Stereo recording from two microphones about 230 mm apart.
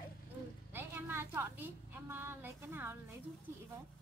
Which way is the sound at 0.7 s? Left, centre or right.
Centre.